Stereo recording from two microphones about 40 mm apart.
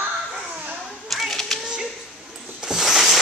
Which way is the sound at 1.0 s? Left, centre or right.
Centre.